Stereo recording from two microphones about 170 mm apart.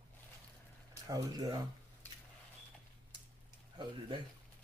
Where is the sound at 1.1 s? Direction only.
20° right (ahead or behind).